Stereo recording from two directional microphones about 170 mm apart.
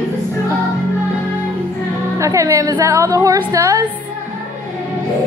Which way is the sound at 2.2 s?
20° right (ahead or behind).